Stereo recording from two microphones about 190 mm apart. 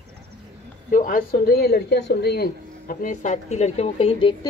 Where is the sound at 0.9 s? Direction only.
45° left (ahead or behind).